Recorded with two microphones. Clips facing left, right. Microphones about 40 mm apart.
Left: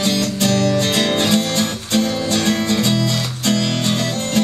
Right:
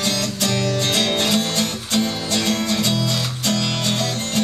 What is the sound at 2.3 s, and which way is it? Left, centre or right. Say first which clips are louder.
Music: left 2 dB; left.